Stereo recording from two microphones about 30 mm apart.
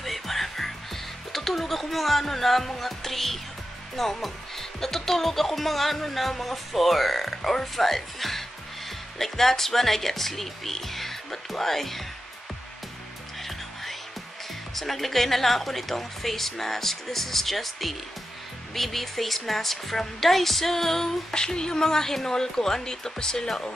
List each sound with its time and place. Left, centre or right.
0.0 s music: centre
1.3 s speech: centre
13.4 s music: centre
14.8 s a woman's voice: centre
21.3 s speech: left